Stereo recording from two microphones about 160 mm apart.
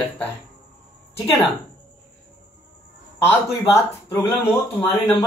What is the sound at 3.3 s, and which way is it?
Speech, 15° left (ahead or behind).